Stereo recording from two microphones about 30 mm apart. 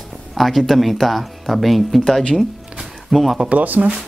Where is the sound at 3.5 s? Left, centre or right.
Right.